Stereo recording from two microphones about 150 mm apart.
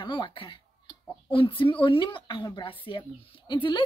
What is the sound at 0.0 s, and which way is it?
A woman's voice, 35° left (ahead or behind).